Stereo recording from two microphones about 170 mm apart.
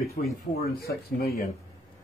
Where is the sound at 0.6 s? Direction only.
65° left (ahead or behind).